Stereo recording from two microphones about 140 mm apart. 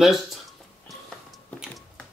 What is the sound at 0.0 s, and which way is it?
Speech, centre (ahead or behind).